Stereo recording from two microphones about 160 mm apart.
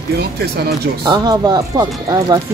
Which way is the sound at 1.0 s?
25° right (ahead or behind).